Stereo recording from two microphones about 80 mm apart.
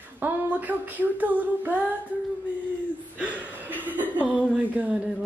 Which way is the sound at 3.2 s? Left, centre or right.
Centre.